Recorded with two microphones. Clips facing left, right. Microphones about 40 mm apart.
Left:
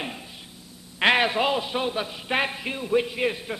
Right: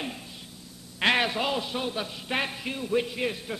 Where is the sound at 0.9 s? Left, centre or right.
Centre.